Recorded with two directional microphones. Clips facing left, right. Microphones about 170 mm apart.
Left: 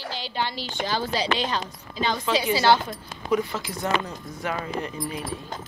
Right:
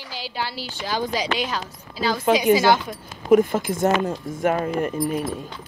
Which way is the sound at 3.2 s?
50° right (ahead or behind).